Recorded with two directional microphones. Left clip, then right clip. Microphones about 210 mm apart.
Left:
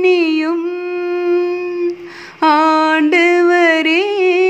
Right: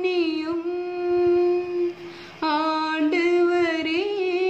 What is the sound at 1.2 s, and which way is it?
Howl, 30° left (ahead or behind).